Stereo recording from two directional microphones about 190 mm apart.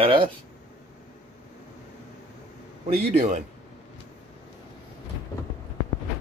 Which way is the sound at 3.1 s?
35° right (ahead or behind).